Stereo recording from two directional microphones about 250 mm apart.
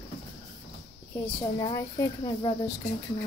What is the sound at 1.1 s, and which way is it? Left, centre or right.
Speech, centre.